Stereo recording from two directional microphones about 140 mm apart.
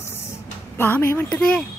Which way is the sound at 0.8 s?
15° left (ahead or behind).